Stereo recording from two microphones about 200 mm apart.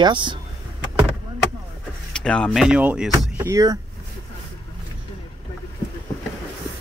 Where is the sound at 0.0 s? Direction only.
25° right (ahead or behind).